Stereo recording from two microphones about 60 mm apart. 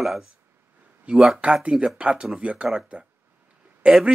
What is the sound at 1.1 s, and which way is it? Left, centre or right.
Speech, centre.